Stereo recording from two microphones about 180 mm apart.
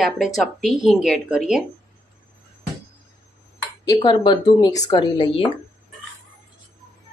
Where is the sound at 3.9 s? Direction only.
25° left (ahead or behind).